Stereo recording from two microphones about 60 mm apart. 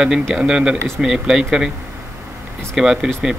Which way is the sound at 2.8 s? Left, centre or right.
Centre.